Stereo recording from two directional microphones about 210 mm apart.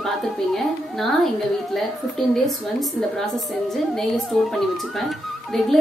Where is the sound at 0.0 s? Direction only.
Centre (ahead or behind).